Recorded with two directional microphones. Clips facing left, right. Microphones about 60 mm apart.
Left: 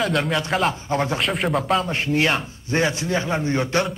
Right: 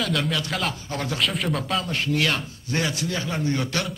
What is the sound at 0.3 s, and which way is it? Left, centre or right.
Speech, left.